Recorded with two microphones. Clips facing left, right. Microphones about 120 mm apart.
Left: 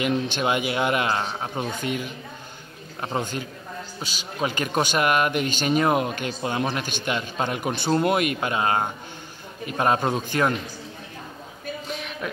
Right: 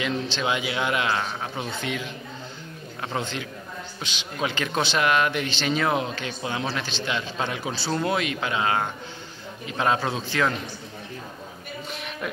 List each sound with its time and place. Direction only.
0.0 s speech: 50° left (ahead or behind)
1.1 s a man's voice: 35° left (ahead or behind)
1.7 s speech: 45° left (ahead or behind)
4.0 s speech: 40° left (ahead or behind)
11.9 s music: centre (ahead or behind)